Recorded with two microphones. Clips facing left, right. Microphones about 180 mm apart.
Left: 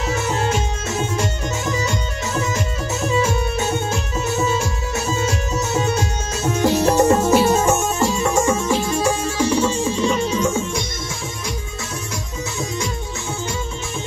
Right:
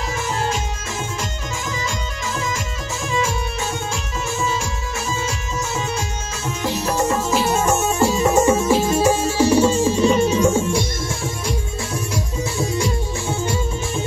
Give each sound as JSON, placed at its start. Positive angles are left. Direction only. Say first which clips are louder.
{"t": 3.0, "sound": "music", "louder": "left 3 dB", "side_deg": 60}
{"t": 6.6, "sound": "music", "louder": "left 6 dB", "side_deg": 65}
{"t": 8.1, "sound": "music", "louder": "right 3 dB", "side_deg": -20}
{"t": 8.5, "sound": "music", "louder": "right 3 dB", "side_deg": -10}
{"t": 12.5, "sound": "music", "louder": "right 4 dB", "side_deg": -35}